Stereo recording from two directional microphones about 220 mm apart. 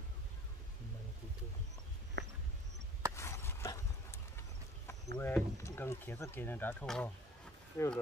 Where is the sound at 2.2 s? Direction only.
50° right (ahead or behind).